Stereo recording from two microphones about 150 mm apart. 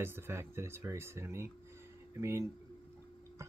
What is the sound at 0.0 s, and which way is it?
Speech, 15° right (ahead or behind).